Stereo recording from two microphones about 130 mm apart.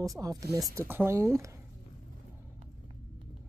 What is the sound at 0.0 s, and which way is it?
Speech, 25° right (ahead or behind).